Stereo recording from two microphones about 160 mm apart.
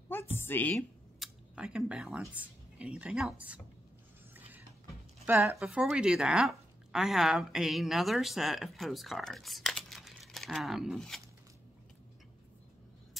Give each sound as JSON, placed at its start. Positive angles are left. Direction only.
{"t": 0.4, "sound": "a woman's voice", "side_deg": 10}
{"t": 1.2, "sound": "speech", "side_deg": -5}
{"t": 5.2, "sound": "speech", "side_deg": -15}
{"t": 5.6, "sound": "speech", "side_deg": -5}